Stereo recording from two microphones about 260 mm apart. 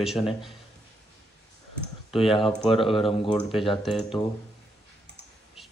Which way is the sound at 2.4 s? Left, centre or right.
Centre.